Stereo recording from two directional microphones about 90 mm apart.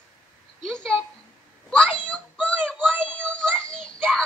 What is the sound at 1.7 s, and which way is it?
Child singing, 10° left (ahead or behind).